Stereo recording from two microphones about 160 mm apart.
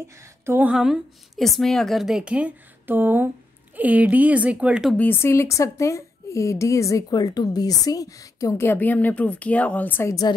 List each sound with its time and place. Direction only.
0.1 s a woman's voice: 15° right (ahead or behind)
4.9 s speech: 15° left (ahead or behind)